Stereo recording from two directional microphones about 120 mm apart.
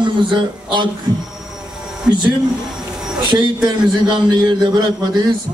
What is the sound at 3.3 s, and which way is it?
A man's voice, 40° right (ahead or behind).